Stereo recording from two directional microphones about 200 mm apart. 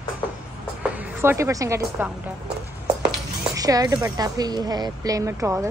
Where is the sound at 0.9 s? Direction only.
10° right (ahead or behind).